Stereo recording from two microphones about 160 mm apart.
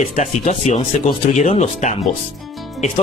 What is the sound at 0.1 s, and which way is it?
Speech, 50° left (ahead or behind).